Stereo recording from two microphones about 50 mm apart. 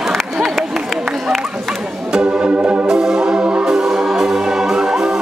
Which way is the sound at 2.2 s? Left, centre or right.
Right.